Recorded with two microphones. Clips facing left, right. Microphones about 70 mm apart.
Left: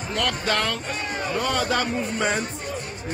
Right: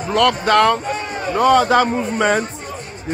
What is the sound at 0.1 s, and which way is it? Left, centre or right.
Speech, right.